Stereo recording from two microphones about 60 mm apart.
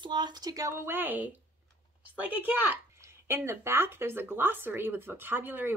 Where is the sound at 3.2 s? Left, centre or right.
Right.